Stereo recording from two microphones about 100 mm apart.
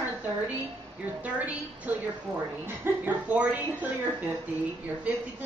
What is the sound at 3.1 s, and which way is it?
A woman's voice, 15° right (ahead or behind).